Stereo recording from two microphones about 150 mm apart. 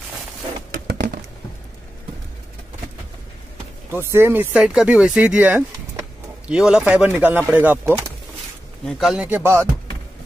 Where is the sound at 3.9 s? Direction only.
15° right (ahead or behind).